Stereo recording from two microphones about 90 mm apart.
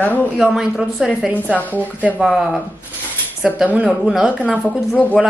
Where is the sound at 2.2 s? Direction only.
5° right (ahead or behind).